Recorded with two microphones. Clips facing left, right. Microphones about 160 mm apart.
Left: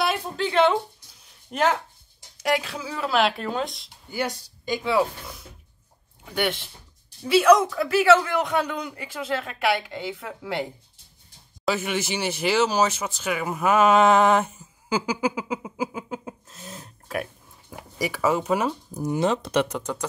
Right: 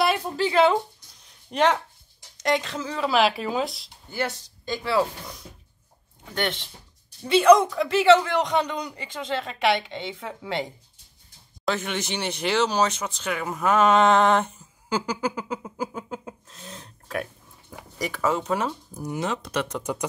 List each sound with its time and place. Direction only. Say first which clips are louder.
0.0 s a woman's voice: right 2 dB; centre (ahead or behind)
4.1 s speech: left 1 dB; 10° left (ahead or behind)
6.2 s speech: left 2 dB; 10° left (ahead or behind)
19.0 s speech: left 5 dB; 30° left (ahead or behind)
19.8 s speech: right 1 dB; 10° right (ahead or behind)